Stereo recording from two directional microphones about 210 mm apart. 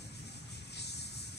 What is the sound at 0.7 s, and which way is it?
Vehicle, 50° left (ahead or behind).